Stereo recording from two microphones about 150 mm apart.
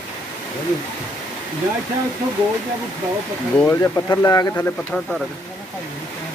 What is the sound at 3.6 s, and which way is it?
Speech, 20° left (ahead or behind).